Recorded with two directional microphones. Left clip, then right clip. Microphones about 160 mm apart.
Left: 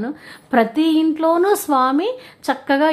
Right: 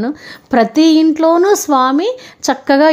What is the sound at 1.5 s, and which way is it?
A woman's voice, 20° right (ahead or behind).